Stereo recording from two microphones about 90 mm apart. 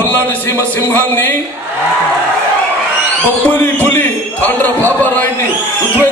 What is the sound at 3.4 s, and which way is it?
A man's voice, 20° left (ahead or behind).